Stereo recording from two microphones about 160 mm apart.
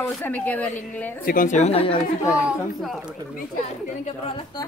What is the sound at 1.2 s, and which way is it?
Speech, 60° left (ahead or behind).